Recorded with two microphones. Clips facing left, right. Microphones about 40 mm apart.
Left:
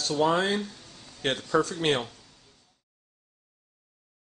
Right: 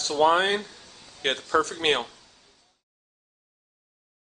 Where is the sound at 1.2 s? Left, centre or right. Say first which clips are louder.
Right 1 dB; centre.